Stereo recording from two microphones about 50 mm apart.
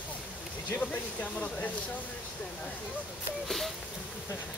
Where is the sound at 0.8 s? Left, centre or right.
Left.